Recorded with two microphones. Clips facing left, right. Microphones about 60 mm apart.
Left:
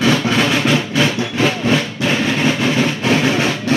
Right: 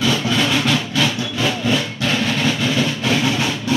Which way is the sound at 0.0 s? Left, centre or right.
Left.